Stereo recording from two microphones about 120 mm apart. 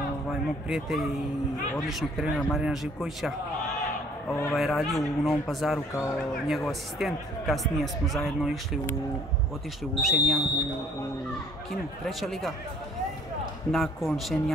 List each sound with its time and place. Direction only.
0.7 s speech: 5° right (ahead or behind)
4.3 s speech: 20° left (ahead or behind)
4.6 s speech: centre (ahead or behind)
10.0 s speech: centre (ahead or behind)
12.1 s speech: centre (ahead or behind)
13.7 s speech: centre (ahead or behind)